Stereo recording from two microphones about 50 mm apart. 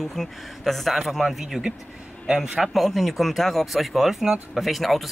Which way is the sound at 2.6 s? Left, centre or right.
Centre.